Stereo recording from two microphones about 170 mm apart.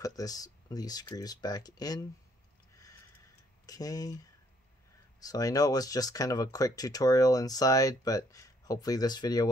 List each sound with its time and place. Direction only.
0.0 s speech: 20° left (ahead or behind)
2.7 s a sound: 20° left (ahead or behind)
3.6 s speech: 20° left (ahead or behind)
5.2 s speech: 20° left (ahead or behind)